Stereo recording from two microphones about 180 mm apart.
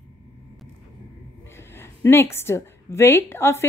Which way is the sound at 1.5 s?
15° left (ahead or behind).